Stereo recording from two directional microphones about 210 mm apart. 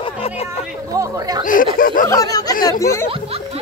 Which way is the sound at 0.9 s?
15° right (ahead or behind).